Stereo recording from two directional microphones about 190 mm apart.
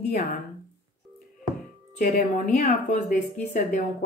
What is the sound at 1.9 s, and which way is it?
A woman's voice, 40° left (ahead or behind).